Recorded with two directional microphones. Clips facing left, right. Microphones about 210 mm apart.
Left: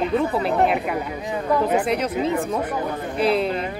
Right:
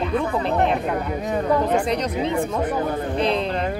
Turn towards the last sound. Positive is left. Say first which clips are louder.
# left 1 dB
turn(degrees=5)  # may be behind; listen again after turning